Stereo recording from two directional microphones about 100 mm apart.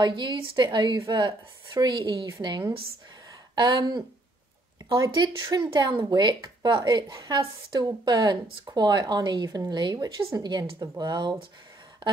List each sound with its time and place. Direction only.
0.0 s speech: 50° right (ahead or behind)
5.0 s speech: 40° right (ahead or behind)